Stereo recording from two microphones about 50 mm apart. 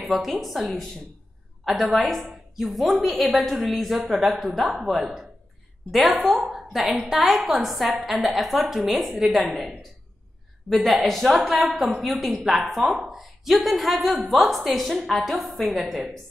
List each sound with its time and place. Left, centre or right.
0.0 s a woman's voice: centre